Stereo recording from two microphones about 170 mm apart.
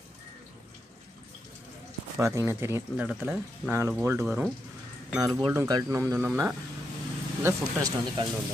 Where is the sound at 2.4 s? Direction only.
15° right (ahead or behind).